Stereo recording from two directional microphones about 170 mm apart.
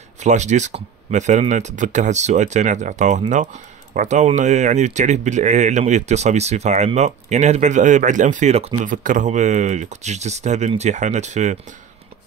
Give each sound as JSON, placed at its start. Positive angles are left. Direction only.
{"t": 0.2, "sound": "speech", "side_deg": -45}
{"t": 8.8, "sound": "speech", "side_deg": -50}